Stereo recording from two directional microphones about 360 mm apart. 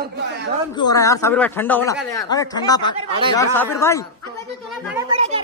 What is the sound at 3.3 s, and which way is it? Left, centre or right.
Speech, centre.